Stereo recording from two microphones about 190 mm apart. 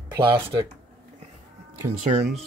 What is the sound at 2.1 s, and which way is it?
Speech, 25° right (ahead or behind).